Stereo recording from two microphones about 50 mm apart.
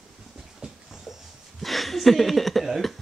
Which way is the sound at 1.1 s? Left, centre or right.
Centre.